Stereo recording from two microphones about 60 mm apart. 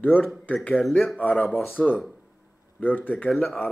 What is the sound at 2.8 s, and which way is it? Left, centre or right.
Speech, left.